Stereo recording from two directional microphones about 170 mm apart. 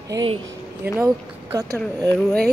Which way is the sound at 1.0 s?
20° right (ahead or behind).